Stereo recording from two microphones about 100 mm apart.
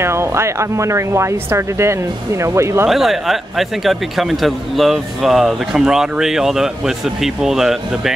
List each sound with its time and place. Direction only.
0.0 s speech: 25° right (ahead or behind)
2.9 s speech: centre (ahead or behind)